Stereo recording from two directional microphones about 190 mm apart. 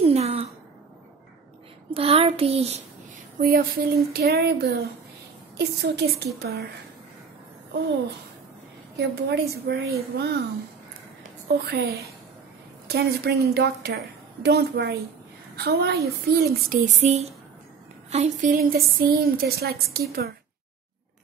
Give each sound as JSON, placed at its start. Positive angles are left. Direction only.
{"t": 0.0, "sound": "a sound", "side_deg": -30}
{"t": 2.0, "sound": "child singing", "side_deg": -30}
{"t": 3.3, "sound": "a woman's voice", "side_deg": -50}
{"t": 8.9, "sound": "a woman's voice", "side_deg": -60}
{"t": 11.4, "sound": "a woman's voice", "side_deg": -55}
{"t": 16.6, "sound": "child singing", "side_deg": -45}
{"t": 18.1, "sound": "a woman's voice", "side_deg": -40}